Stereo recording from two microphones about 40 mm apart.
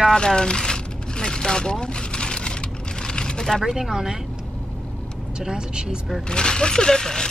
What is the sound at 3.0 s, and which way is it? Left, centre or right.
Vehicle, centre.